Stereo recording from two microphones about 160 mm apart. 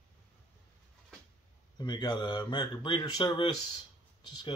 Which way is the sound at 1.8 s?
25° left (ahead or behind).